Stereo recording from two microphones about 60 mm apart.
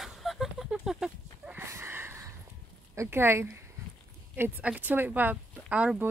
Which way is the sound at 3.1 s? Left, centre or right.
Right.